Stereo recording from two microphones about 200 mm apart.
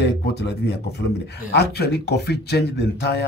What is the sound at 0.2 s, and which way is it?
Speech, 55° left (ahead or behind).